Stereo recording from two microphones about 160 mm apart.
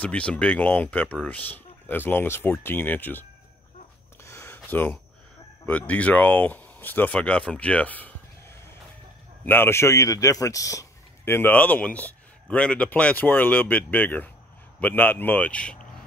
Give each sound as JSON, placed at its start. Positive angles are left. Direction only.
{"t": 0.0, "sound": "speech", "side_deg": 5}
{"t": 4.2, "sound": "a sound", "side_deg": 15}
{"t": 4.6, "sound": "speech", "side_deg": 10}
{"t": 9.4, "sound": "speech", "side_deg": 15}